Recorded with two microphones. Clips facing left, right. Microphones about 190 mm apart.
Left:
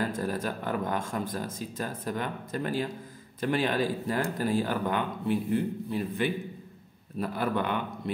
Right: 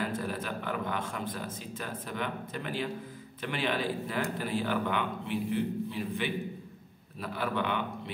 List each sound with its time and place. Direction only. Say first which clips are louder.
0.1 s speech: left 3 dB; 40° left (ahead or behind)